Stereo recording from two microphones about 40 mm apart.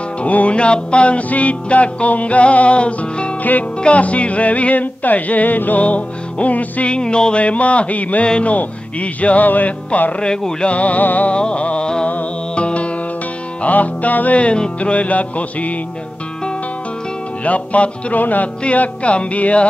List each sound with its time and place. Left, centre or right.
0.2 s music: left
7.0 s music: left
7.4 s music: left
10.2 s music: centre
10.7 s music: left
11.3 s music: left
13.6 s music: left
14.4 s music: left
17.5 s music: left
18.6 s music: left